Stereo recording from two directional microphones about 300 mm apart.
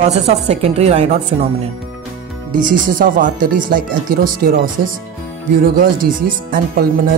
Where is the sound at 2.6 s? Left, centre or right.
Right.